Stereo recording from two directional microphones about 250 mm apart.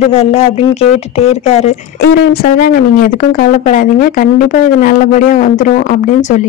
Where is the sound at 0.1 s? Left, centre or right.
Left.